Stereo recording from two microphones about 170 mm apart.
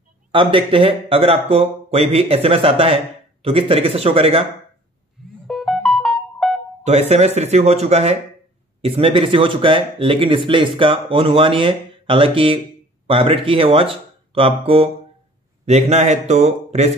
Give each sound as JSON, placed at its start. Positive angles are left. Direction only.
{"t": 0.3, "sound": "speech", "side_deg": -30}
{"t": 5.5, "sound": "music", "side_deg": 0}
{"t": 6.8, "sound": "speech", "side_deg": -40}